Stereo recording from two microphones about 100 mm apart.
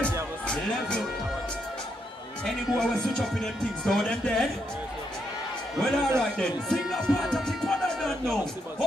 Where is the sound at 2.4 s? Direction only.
5° left (ahead or behind).